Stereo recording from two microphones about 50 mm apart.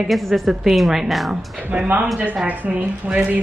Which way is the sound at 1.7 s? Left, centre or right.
Right.